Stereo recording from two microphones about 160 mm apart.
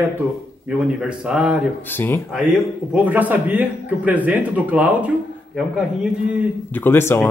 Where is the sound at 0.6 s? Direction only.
5° right (ahead or behind).